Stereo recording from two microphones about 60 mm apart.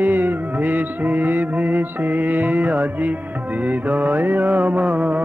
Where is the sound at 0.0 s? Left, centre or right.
Right.